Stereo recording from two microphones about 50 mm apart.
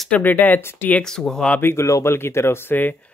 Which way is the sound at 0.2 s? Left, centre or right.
Left.